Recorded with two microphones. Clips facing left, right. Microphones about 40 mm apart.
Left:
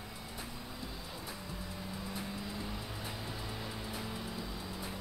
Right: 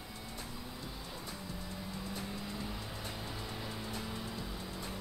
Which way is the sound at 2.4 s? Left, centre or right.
Centre.